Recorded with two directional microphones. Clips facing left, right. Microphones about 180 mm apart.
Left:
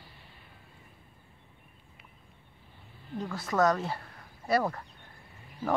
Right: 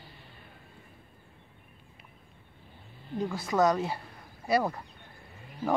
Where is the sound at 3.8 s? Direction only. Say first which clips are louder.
Right 1 dB; 5° right (ahead or behind).